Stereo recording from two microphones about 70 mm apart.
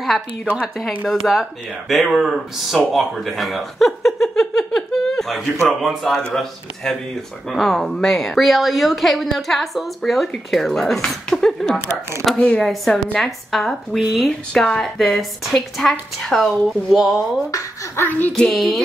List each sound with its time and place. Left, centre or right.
1.0 s speech: centre
17.9 s music: left
18.3 s speech: centre